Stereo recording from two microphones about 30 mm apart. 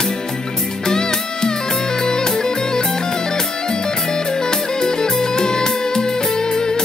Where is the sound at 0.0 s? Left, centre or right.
Left.